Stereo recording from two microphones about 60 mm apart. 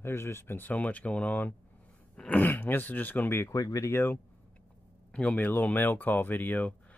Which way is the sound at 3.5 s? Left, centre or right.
Left.